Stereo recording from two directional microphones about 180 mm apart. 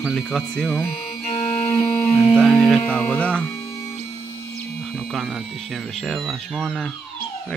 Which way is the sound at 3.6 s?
15° left (ahead or behind).